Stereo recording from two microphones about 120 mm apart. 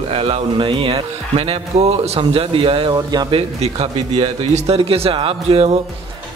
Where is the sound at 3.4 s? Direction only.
60° right (ahead or behind).